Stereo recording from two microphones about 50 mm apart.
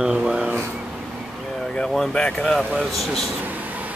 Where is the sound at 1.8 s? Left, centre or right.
Centre.